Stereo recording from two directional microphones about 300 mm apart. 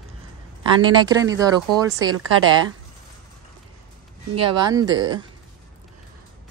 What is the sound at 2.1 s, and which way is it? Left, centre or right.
Speech, right.